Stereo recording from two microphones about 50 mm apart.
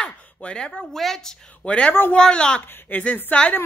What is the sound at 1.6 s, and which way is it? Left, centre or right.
Speech, left.